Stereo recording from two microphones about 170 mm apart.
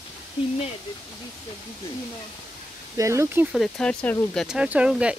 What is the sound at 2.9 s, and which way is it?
Speech, 15° right (ahead or behind).